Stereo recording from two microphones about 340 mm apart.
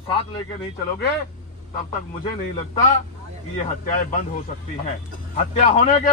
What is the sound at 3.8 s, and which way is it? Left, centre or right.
Speech, left.